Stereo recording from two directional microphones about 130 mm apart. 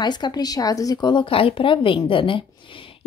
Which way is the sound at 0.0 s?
35° left (ahead or behind).